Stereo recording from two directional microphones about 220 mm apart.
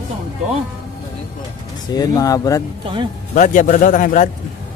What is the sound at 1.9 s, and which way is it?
Speech, 15° left (ahead or behind).